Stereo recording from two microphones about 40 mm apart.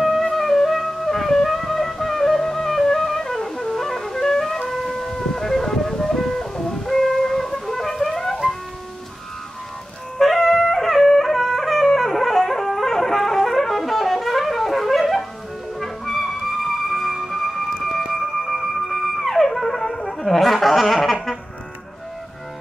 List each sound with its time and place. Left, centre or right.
0.0 s music: centre
10.1 s wind instrument: centre
15.8 s music: centre